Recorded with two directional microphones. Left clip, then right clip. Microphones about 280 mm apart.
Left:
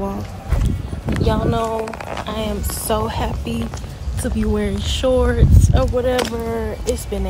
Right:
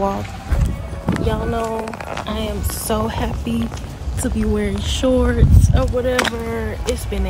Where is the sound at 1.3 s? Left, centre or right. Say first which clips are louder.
Left 4 dB; centre.